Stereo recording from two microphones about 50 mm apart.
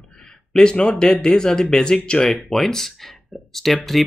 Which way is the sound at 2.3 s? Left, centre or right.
Centre.